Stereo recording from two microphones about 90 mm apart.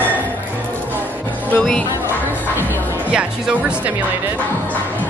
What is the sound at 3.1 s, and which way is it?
Speech, 10° right (ahead or behind).